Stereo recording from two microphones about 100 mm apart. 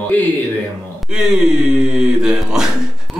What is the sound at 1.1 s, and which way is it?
Speech, 5° right (ahead or behind).